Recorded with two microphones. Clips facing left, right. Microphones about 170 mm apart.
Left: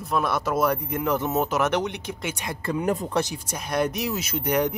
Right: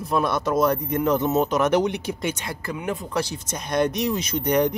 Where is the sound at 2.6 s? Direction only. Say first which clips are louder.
Left 4 dB; 35° left (ahead or behind).